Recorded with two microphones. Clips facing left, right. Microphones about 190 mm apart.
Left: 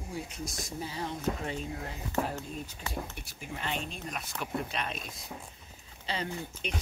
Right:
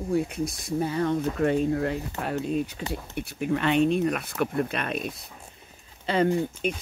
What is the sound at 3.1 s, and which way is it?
Speech, 60° right (ahead or behind).